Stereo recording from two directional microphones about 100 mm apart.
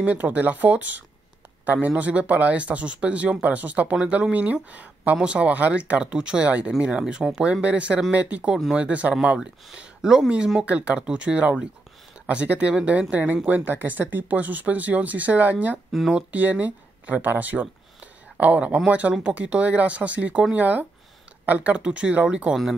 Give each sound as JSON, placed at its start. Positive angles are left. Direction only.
{"t": 0.0, "sound": "speech", "side_deg": -15}